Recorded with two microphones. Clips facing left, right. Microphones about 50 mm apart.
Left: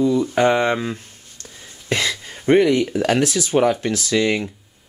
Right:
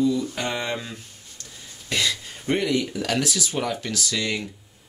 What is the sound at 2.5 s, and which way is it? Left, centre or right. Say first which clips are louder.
Speech: left 8 dB; left.